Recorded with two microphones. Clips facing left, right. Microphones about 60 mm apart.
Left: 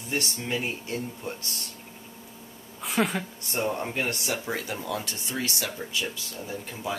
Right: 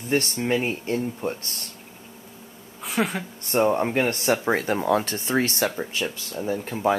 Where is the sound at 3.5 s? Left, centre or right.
Right.